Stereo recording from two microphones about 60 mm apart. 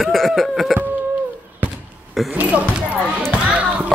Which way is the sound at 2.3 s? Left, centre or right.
Right.